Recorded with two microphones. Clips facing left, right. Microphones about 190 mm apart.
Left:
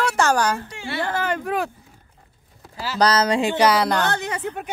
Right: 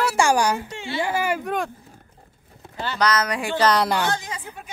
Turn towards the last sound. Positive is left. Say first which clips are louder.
# left 3 dB
turn(degrees=65)  # may be behind; listen again after turning